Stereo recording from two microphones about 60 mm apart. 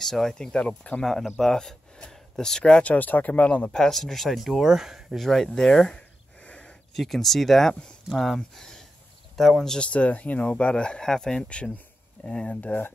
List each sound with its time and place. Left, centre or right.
0.0 s speech: centre
1.4 s speech: centre
2.8 s speech: left
3.6 s speech: centre
5.2 s speech: centre
5.7 s a sound: centre
7.0 s speech: centre
9.8 s speech: left
12.5 s speech: left